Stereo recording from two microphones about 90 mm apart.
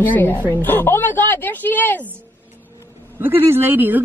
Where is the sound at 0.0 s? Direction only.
20° left (ahead or behind).